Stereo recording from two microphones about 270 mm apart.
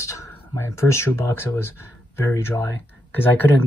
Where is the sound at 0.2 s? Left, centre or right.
Centre.